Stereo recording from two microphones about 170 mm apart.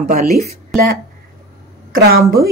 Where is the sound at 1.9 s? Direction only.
65° right (ahead or behind).